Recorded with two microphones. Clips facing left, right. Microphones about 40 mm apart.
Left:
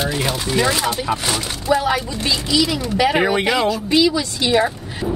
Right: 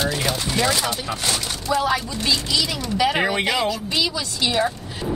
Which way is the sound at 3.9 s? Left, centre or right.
Centre.